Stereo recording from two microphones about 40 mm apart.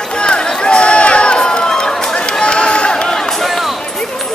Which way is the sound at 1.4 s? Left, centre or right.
Centre.